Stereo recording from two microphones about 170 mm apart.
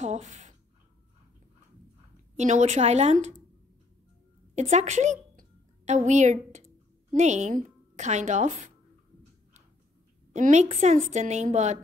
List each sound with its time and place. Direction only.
0.0 s a sound: 45° right (ahead or behind)
2.3 s a woman's voice: 45° right (ahead or behind)
4.6 s a woman's voice: 40° right (ahead or behind)
10.3 s a woman's voice: 45° right (ahead or behind)